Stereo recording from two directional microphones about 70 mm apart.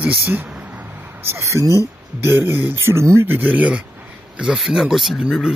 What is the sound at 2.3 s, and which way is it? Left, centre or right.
Speech, right.